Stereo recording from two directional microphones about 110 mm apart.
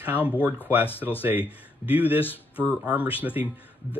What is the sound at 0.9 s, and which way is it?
Speech, 20° left (ahead or behind).